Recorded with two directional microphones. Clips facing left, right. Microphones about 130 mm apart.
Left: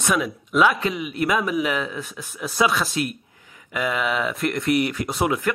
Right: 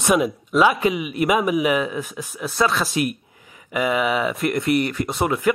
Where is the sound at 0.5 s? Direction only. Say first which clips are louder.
Right 2 dB; 5° right (ahead or behind).